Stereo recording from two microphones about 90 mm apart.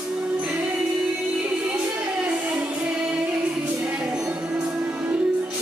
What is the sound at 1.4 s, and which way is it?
Music, 15° right (ahead or behind).